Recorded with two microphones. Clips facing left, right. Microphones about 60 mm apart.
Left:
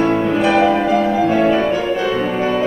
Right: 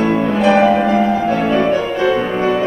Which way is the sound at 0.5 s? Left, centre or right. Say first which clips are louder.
Right 2 dB; right.